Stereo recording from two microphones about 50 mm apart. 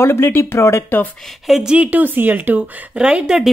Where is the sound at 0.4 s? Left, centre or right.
Left.